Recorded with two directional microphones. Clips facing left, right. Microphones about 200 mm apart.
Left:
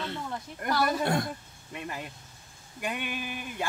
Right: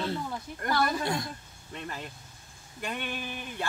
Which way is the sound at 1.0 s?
55° left (ahead or behind).